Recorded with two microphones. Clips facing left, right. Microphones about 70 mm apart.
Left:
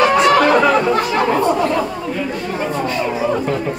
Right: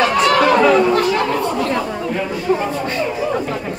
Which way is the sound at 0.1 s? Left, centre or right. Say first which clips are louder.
Left 2 dB; left.